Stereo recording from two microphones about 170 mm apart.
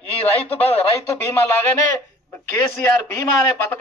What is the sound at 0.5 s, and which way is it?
Speech, 35° left (ahead or behind).